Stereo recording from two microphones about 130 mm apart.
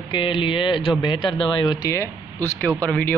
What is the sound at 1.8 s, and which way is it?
Speech, 20° left (ahead or behind).